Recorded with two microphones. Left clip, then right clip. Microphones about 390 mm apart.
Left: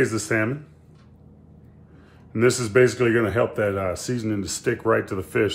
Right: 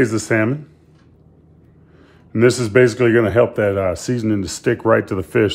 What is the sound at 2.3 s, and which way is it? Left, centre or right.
Speech, right.